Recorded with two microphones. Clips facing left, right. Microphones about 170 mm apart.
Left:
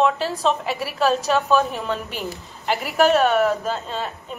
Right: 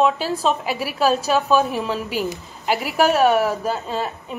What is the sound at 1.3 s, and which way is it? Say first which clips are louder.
A woman's voice: right 1 dB; centre (ahead or behind).